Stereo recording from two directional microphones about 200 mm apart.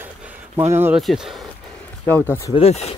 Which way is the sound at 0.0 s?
10° right (ahead or behind).